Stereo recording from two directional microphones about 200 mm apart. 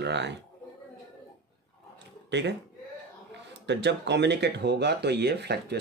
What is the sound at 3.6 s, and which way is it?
Speech, 60° right (ahead or behind).